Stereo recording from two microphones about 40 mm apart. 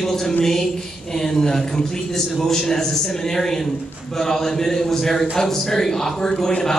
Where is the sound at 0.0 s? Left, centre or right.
Centre.